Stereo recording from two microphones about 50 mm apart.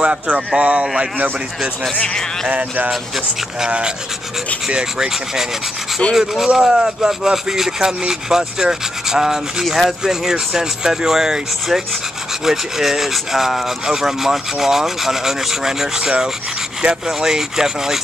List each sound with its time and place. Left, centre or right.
0.0 s speech: centre
2.4 s speech: right
3.6 s rub: centre